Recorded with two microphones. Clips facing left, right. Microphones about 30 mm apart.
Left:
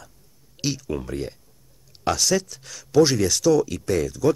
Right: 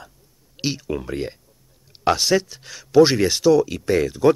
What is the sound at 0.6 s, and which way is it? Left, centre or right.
Speech, centre.